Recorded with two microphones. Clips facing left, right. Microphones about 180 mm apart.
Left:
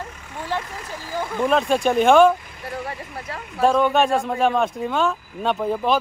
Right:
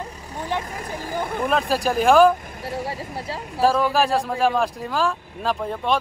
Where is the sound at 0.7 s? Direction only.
50° right (ahead or behind).